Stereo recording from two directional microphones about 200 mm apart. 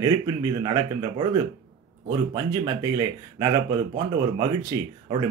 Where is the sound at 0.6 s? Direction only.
20° right (ahead or behind).